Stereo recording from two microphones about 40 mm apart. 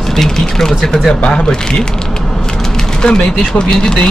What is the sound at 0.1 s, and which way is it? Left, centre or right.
Speech, centre.